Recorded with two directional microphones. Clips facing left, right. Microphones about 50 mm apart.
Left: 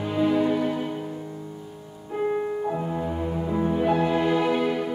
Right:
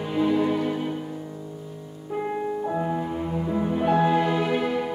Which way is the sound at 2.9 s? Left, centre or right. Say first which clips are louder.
Even; centre.